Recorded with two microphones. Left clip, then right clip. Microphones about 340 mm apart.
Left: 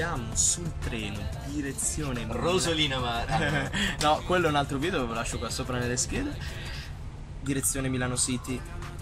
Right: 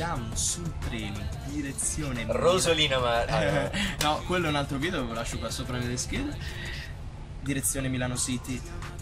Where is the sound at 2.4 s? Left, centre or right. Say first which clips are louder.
Right 3 dB; centre.